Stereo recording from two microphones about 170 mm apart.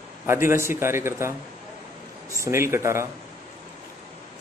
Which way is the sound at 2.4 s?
15° right (ahead or behind).